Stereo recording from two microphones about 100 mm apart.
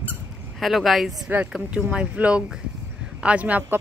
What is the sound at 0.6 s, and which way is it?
Speech, centre (ahead or behind).